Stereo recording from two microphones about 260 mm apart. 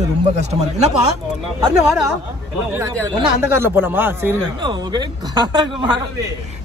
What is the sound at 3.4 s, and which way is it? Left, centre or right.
Speech, centre.